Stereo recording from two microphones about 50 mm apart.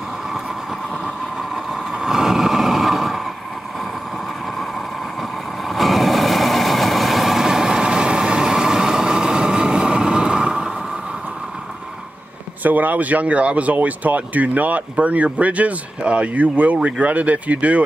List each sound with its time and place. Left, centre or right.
1.0 s vehicle: centre
5.7 s vehicle: centre
12.6 s speech: right